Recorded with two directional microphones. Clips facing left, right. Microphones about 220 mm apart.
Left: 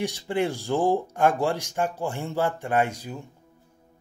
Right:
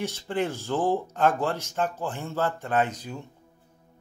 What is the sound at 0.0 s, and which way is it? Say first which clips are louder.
Speech: left 2 dB; 15° left (ahead or behind).